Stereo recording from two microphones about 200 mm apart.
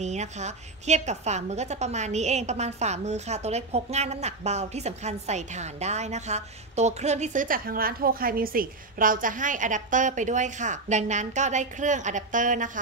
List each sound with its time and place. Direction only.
0.0 s a woman's voice: 35° right (ahead or behind)